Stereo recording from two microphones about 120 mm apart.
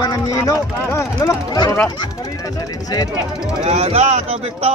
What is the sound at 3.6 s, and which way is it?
Speech, 65° right (ahead or behind).